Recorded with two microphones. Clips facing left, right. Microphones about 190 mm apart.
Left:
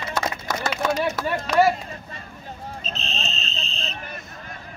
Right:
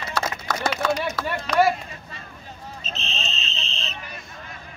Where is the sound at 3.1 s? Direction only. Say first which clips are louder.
Left 2 dB; 45° left (ahead or behind).